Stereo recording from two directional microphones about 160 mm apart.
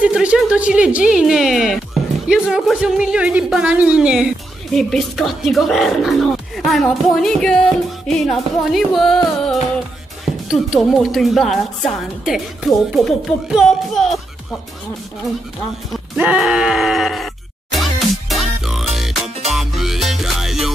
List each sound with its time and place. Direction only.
0.0 s speech: 5° right (ahead or behind)
16.2 s speech: 5° right (ahead or behind)
17.7 s music: centre (ahead or behind)